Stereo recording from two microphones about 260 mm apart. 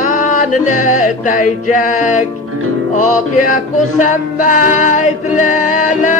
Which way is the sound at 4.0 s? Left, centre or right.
Left.